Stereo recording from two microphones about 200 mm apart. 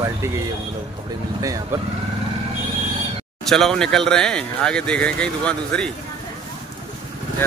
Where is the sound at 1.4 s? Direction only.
15° right (ahead or behind).